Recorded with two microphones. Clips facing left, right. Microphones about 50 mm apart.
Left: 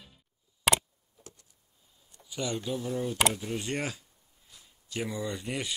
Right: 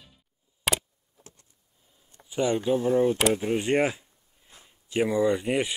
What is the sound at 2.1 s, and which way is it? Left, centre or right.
Speech, right.